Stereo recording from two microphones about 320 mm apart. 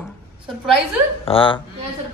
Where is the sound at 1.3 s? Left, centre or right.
Centre.